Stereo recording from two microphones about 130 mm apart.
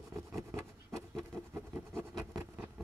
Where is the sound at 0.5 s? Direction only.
20° right (ahead or behind).